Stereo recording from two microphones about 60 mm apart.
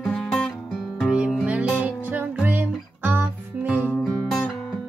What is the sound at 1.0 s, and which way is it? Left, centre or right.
Music, centre.